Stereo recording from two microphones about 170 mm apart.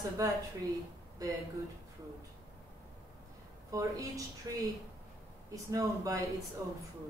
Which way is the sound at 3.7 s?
20° right (ahead or behind).